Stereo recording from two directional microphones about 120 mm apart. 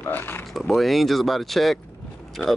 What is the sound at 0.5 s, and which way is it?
A man's voice, centre (ahead or behind).